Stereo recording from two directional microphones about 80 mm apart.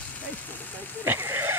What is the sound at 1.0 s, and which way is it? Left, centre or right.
Speech, right.